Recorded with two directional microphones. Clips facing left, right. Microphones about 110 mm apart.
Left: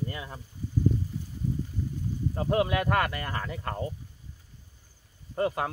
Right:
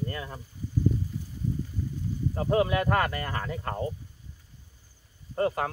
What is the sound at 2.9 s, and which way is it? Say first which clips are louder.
Speech: right 1 dB; 30° right (ahead or behind).